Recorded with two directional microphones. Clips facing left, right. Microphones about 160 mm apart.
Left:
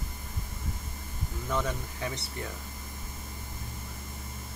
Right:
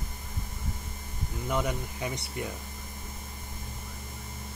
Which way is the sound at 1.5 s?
15° right (ahead or behind).